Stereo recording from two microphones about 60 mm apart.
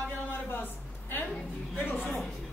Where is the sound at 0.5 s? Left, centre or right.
Left.